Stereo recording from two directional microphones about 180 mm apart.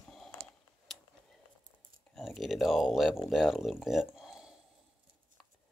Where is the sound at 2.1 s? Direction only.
Centre (ahead or behind).